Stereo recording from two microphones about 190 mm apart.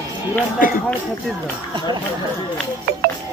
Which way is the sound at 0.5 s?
45° left (ahead or behind).